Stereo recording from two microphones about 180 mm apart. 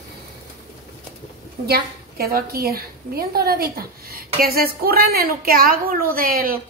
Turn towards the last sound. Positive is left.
turn(degrees=-55)  # may be behind; listen again after turning